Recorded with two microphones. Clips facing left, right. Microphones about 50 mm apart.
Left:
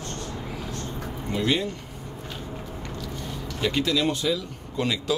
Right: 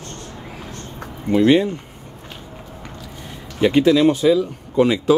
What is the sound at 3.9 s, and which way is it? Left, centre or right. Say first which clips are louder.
Speech: right 10 dB; centre.